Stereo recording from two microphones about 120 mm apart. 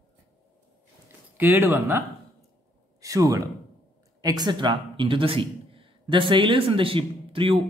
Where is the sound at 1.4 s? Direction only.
15° right (ahead or behind).